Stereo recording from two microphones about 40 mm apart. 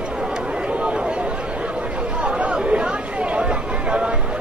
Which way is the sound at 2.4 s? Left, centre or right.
Right.